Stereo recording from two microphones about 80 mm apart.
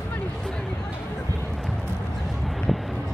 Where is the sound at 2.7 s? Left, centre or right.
Centre.